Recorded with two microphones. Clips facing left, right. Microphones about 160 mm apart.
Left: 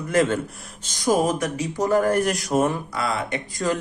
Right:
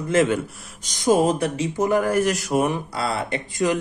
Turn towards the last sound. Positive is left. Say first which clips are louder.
# right 1 dB
turn(degrees=-30)  # may be behind; listen again after turning